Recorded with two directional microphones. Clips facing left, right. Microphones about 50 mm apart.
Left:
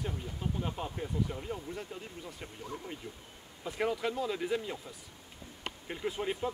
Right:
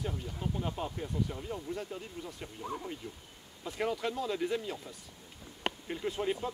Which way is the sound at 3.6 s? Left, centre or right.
Centre.